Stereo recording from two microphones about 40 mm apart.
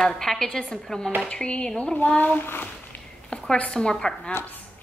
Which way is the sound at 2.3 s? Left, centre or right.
Left.